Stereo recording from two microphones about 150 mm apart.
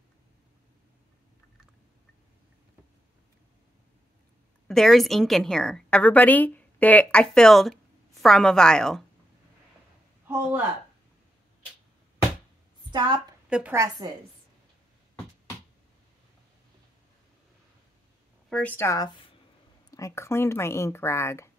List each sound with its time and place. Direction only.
4.6 s a woman's voice: centre (ahead or behind)
10.2 s speech: 15° right (ahead or behind)
12.9 s a woman's voice: 30° right (ahead or behind)
13.5 s speech: 10° right (ahead or behind)
18.5 s speech: 10° left (ahead or behind); by 19.3 s 30° left (ahead or behind)
19.9 s speech: 20° left (ahead or behind)